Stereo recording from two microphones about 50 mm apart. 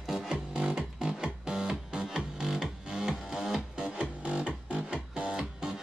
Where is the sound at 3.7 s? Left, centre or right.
Right.